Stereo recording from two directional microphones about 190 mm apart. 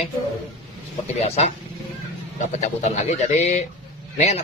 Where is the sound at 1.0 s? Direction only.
35° left (ahead or behind).